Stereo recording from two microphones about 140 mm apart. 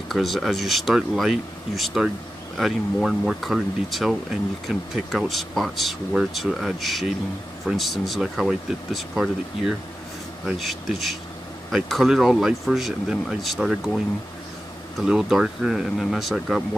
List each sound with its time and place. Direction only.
0.1 s speech: centre (ahead or behind)